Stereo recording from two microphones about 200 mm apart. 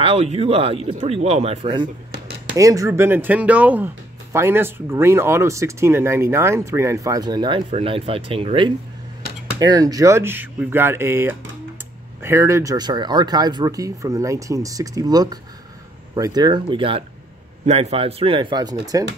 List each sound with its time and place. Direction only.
0.0 s speech: 30° right (ahead or behind)
2.5 s speech: 15° right (ahead or behind)